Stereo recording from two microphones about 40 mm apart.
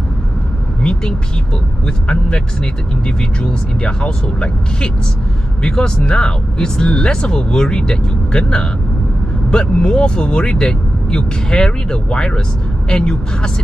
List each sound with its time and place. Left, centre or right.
0.8 s speech: left